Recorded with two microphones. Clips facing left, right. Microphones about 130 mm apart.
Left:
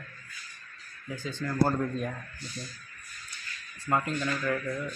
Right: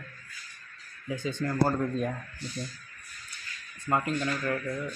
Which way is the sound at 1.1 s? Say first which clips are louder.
Right 3 dB; 15° right (ahead or behind).